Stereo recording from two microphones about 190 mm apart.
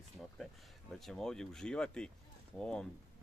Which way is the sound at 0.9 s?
Centre (ahead or behind).